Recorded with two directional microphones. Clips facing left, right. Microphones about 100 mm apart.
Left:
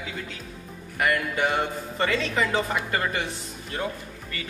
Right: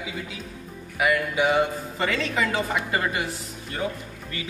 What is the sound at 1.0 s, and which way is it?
Speech, 5° right (ahead or behind).